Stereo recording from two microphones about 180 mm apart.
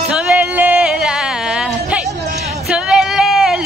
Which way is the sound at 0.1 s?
5° right (ahead or behind).